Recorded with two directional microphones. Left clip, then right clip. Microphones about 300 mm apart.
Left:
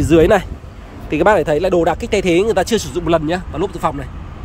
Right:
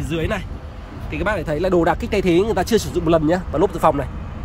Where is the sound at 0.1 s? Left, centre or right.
Centre.